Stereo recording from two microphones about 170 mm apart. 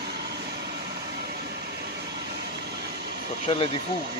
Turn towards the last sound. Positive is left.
turn(degrees=25)  # may be behind; listen again after turning